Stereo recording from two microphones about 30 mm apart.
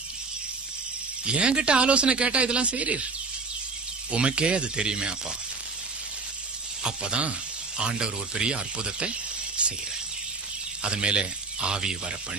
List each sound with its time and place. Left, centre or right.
1.2 s speech: right
4.1 s speech: right
6.8 s speech: right
9.6 s cricket: right
10.8 s speech: right